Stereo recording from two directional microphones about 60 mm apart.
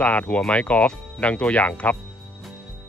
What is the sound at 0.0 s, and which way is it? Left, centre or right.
Speech, left.